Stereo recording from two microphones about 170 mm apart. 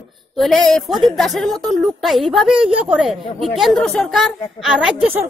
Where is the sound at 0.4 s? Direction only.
Centre (ahead or behind).